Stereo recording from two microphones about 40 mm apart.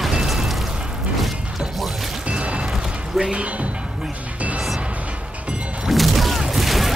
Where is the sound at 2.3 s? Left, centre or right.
Right.